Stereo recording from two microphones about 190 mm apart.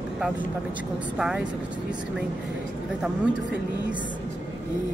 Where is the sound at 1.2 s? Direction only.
5° right (ahead or behind).